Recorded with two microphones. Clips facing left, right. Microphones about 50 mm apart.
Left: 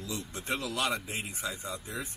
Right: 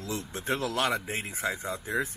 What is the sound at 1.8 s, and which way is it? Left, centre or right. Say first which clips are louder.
Speech: right 9 dB; right.